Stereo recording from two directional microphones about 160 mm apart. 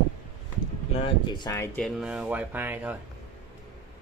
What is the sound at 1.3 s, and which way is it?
Speech, 30° left (ahead or behind).